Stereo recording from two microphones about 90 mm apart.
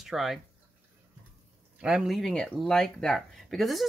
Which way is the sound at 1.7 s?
10° right (ahead or behind).